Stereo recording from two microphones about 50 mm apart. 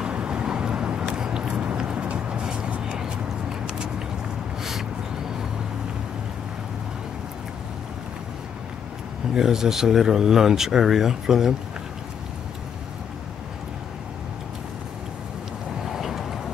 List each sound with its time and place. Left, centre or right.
0.0 s vehicle: right
2.9 s a sound: centre
9.3 s speech: centre
15.8 s vehicle: centre